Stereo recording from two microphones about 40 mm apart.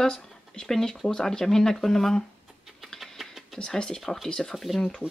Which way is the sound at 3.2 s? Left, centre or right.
Centre.